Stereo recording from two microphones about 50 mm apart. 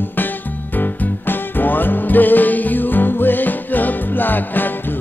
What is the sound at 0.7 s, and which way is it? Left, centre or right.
Music, left.